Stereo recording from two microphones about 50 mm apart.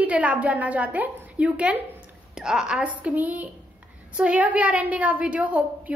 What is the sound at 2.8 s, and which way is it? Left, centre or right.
A woman's voice, right.